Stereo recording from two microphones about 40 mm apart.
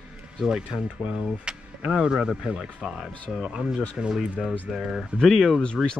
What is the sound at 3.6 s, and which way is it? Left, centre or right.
Speech, right.